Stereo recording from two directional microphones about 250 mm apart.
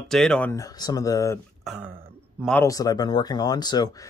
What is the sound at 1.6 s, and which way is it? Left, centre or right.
Speech, centre.